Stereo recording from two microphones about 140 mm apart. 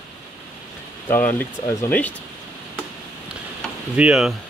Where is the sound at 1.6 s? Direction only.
25° left (ahead or behind).